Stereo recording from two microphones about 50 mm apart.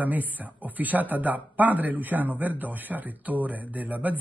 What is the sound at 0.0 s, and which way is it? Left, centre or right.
Speech, right.